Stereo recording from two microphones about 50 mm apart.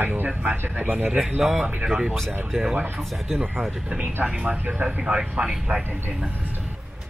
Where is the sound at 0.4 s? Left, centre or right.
Right.